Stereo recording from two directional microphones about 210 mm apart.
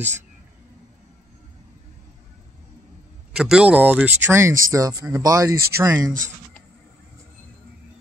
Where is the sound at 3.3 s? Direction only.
5° right (ahead or behind).